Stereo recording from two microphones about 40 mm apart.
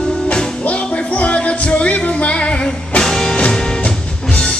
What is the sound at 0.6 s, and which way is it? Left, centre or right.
Music, left.